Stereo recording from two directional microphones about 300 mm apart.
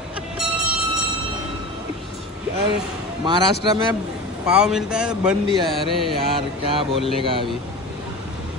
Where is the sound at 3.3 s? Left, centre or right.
Centre.